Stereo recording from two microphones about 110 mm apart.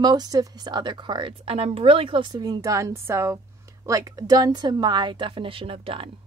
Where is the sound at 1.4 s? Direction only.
65° right (ahead or behind).